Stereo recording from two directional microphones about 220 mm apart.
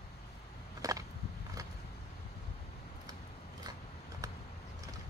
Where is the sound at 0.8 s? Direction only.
15° right (ahead or behind).